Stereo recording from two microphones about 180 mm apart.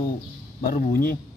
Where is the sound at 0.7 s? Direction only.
55° left (ahead or behind).